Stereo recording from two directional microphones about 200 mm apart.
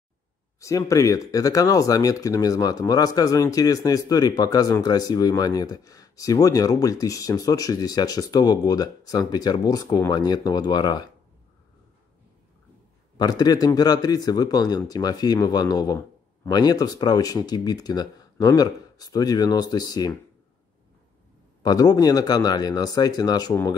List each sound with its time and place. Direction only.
0.6 s speech: 15° left (ahead or behind)
13.2 s speech: 20° left (ahead or behind)
21.6 s speech: 20° left (ahead or behind)